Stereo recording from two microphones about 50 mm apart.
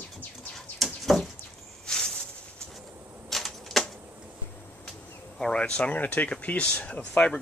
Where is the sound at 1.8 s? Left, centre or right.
Centre.